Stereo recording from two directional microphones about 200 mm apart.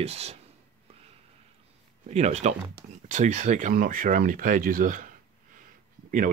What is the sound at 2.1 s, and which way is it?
Speech, 35° right (ahead or behind).